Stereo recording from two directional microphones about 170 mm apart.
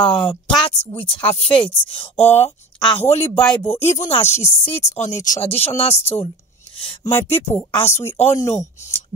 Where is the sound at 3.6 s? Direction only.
35° left (ahead or behind).